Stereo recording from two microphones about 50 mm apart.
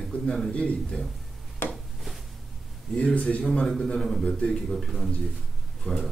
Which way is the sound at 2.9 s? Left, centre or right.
Left.